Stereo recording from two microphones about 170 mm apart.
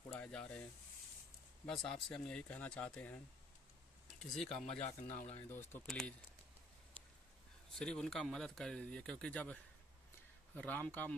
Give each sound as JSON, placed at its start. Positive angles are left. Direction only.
{"t": 0.1, "sound": "a sound", "side_deg": 5}
{"t": 1.7, "sound": "speech", "side_deg": 5}
{"t": 4.2, "sound": "speech", "side_deg": 5}
{"t": 4.6, "sound": "speech", "side_deg": 40}
{"t": 5.5, "sound": "speech", "side_deg": 15}
{"t": 7.7, "sound": "speech", "side_deg": 5}